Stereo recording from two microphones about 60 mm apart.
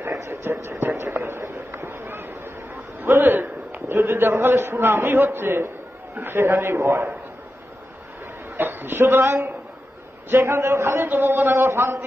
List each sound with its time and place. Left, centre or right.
0.0 s a sound: right
6.1 s a man's voice: right
8.5 s a man's voice: right